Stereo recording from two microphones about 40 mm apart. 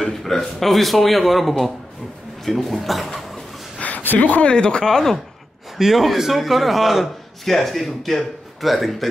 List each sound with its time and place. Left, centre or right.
0.0 s a man's voice: centre
4.0 s speech: left
4.5 s speech: left
5.8 s a man's voice: centre